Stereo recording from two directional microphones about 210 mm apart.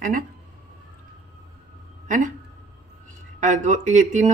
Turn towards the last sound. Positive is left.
turn(degrees=-35)  # may be behind; listen again after turning